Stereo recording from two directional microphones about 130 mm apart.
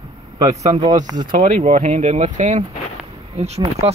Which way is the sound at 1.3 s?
55° right (ahead or behind).